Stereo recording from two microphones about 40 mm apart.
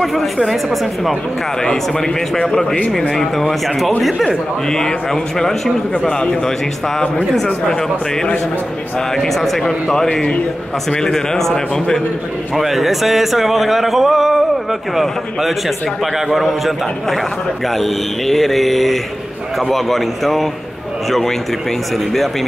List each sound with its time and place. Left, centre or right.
0.0 s speech: centre
1.6 s a man's voice: centre
5.9 s a man's voice: left
9.1 s speech: centre
10.9 s a man's voice: centre
12.5 s speech: centre